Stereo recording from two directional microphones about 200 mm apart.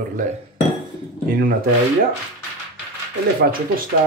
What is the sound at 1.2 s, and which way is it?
Speech, 45° right (ahead or behind).